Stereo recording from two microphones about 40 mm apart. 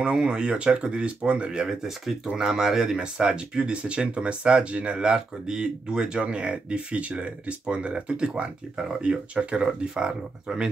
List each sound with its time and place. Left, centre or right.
0.0 s speech: right
1.5 s speech: centre